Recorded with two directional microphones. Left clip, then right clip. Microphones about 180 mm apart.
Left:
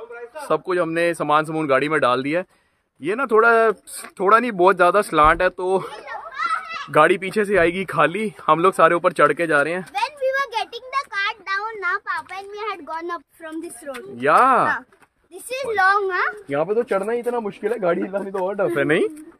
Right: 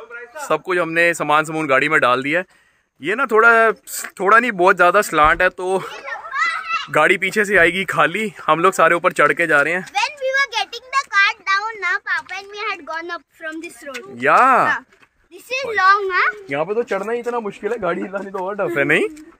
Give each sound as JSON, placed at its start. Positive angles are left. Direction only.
{"t": 0.4, "sound": "speech", "side_deg": -5}
{"t": 6.9, "sound": "speech", "side_deg": -5}
{"t": 9.9, "sound": "a sound", "side_deg": 25}
{"t": 12.4, "sound": "a child's voice", "side_deg": 30}
{"t": 14.1, "sound": "speech", "side_deg": -15}
{"t": 15.5, "sound": "a child's voice", "side_deg": 45}
{"t": 16.4, "sound": "speech", "side_deg": 0}